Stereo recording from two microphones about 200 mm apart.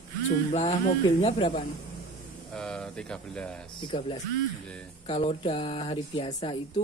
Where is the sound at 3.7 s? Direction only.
25° left (ahead or behind).